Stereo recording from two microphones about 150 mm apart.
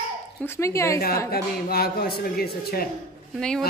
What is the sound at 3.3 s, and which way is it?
Speech, 5° left (ahead or behind).